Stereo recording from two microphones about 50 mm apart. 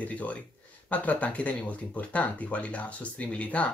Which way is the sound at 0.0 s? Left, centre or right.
Left.